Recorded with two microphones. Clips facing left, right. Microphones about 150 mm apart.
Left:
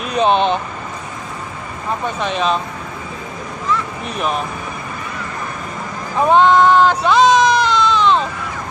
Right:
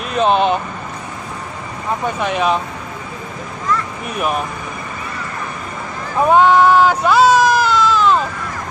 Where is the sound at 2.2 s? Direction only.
10° right (ahead or behind).